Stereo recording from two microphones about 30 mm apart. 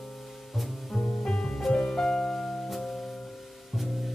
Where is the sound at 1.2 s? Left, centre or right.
Left.